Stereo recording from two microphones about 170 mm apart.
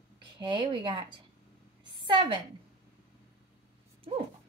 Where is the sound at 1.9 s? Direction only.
30° right (ahead or behind).